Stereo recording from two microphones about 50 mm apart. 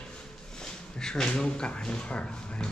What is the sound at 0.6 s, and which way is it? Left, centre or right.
Speech, centre.